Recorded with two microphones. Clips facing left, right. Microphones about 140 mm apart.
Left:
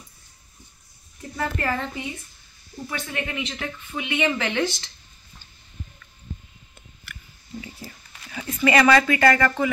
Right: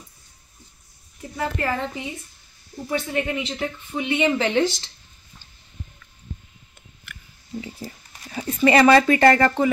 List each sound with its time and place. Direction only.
1.3 s a woman's voice: 10° right (ahead or behind)
2.9 s speech: 25° right (ahead or behind)
7.6 s a sound: 35° right (ahead or behind)